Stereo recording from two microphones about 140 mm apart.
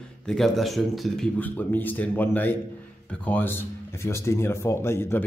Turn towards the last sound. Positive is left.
turn(degrees=15)  # may be behind; listen again after turning